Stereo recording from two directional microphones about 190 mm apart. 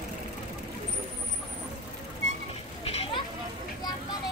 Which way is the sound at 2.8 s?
30° left (ahead or behind).